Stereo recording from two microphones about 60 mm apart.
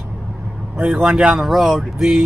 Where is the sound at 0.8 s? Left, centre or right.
Centre.